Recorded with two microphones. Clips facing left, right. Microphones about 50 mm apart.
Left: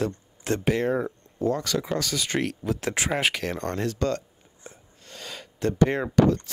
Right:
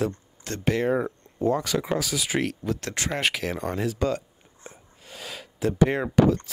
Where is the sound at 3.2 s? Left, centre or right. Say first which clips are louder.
Even; centre.